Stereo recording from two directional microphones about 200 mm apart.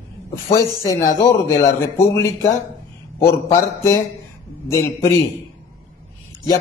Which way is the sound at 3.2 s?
15° left (ahead or behind).